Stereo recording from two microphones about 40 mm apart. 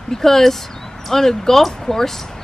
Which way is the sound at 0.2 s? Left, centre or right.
Centre.